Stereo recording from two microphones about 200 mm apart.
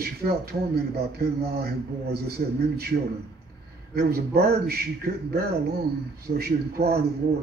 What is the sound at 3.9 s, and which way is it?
A man's voice, 50° right (ahead or behind).